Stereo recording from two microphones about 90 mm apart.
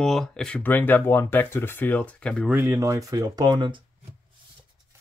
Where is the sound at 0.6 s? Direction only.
20° left (ahead or behind).